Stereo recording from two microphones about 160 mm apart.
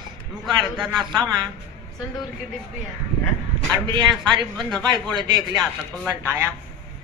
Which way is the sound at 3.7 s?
30° right (ahead or behind).